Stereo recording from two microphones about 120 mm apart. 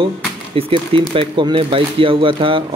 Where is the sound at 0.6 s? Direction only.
50° right (ahead or behind).